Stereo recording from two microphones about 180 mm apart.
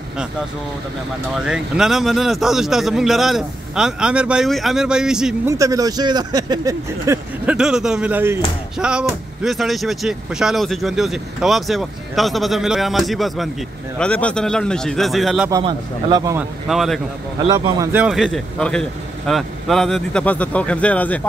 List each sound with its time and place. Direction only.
1.3 s speech: 5° right (ahead or behind)
5.5 s speech: 20° right (ahead or behind)
7.4 s speech: 5° right (ahead or behind)
15.6 s speech: 25° right (ahead or behind)
16.3 s speech: centre (ahead or behind)
17.5 s speech: 20° right (ahead or behind)
18.0 s speech: centre (ahead or behind)